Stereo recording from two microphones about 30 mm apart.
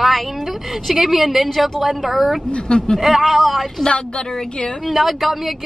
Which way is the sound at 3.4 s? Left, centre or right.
Centre.